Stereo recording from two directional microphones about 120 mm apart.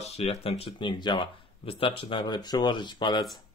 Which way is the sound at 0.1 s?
55° left (ahead or behind).